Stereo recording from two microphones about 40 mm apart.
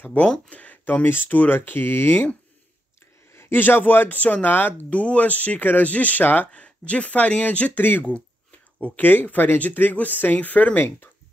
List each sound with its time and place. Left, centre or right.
0.0 s speech: left
1.0 s speech: left
3.3 s a sound: left
3.6 s speech: left
4.9 s speech: left
6.5 s speech: left
8.0 s a sound: left
8.8 s speech: left